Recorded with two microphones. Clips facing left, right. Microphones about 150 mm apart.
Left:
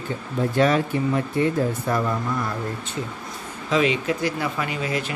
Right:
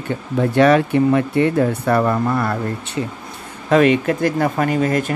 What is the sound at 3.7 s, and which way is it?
Speech, 55° right (ahead or behind).